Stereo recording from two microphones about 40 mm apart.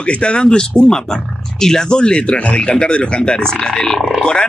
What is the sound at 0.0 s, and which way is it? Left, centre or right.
Speech, left.